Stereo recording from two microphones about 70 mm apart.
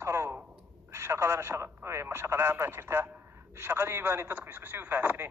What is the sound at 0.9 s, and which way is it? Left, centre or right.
Speech, right.